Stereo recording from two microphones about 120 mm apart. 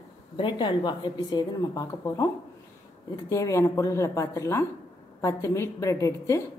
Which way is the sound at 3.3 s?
25° left (ahead or behind).